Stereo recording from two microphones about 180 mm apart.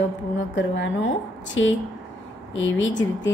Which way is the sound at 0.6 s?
90° left.